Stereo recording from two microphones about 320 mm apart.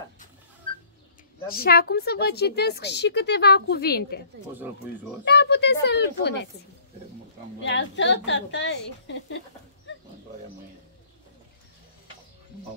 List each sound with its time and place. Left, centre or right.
1.5 s a woman's voice: left
5.2 s a woman's voice: left
7.6 s a woman's voice: left